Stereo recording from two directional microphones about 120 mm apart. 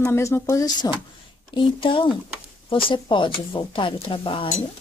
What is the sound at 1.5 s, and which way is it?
Speech, 45° left (ahead or behind).